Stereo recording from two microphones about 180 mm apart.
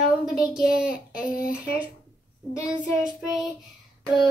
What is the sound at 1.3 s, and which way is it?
Speech, 55° left (ahead or behind).